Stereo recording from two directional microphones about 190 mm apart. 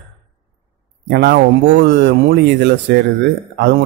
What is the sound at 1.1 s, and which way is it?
Speech, 60° right (ahead or behind).